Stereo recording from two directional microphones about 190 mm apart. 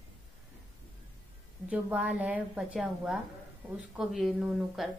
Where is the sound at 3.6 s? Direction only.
Centre (ahead or behind).